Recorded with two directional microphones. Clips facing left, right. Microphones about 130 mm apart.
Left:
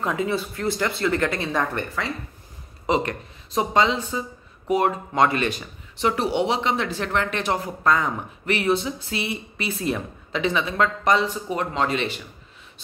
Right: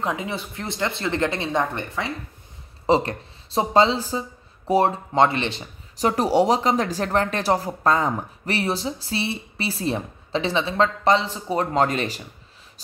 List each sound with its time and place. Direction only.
0.0 s speech: 20° right (ahead or behind)
2.9 s speech: 30° right (ahead or behind)
5.9 s speech: 40° right (ahead or behind)